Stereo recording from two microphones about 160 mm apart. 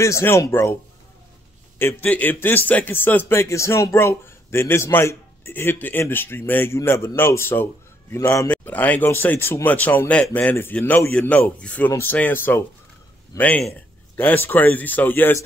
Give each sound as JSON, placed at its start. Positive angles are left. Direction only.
{"t": 0.0, "sound": "a man's voice", "side_deg": 15}
{"t": 1.8, "sound": "a man's voice", "side_deg": 10}